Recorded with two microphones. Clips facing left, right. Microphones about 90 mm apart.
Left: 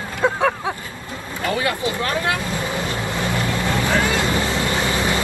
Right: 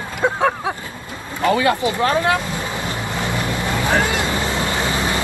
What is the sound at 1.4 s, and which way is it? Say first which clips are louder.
Vehicle: right 5 dB; 25° right (ahead or behind).